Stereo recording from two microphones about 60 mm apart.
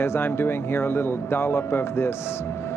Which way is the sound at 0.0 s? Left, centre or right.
Left.